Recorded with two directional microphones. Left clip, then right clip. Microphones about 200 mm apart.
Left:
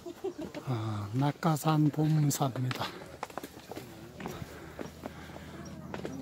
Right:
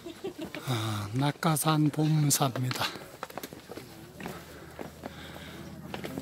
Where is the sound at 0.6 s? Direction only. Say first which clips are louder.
Right 7 dB; 5° right (ahead or behind).